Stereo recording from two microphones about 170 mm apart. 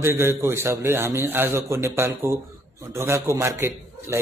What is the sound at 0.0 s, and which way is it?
A man's voice, 15° right (ahead or behind).